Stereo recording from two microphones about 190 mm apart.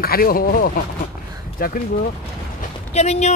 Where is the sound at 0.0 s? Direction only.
50° left (ahead or behind).